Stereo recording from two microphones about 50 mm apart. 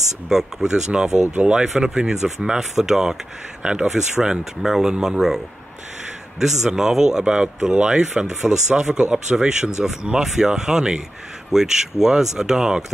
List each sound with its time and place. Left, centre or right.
0.3 s speech: centre
6.4 s speech: centre